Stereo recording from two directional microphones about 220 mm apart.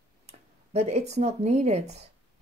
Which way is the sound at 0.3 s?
30° right (ahead or behind).